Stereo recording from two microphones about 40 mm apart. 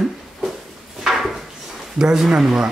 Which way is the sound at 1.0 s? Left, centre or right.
Centre.